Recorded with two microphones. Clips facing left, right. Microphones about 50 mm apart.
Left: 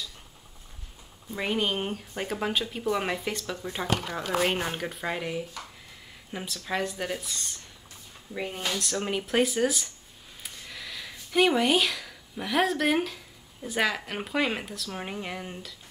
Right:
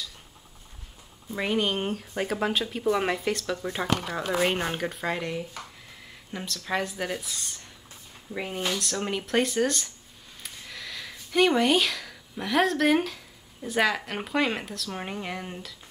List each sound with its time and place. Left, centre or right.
1.4 s speech: centre